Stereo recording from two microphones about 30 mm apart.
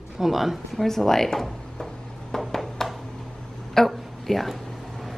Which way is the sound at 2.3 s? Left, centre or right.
Centre.